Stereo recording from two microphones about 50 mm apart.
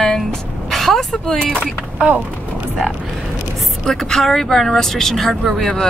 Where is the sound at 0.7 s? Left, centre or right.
Centre.